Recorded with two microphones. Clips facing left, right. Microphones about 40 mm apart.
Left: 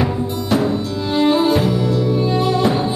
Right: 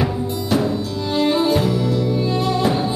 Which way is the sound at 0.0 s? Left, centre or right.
Centre.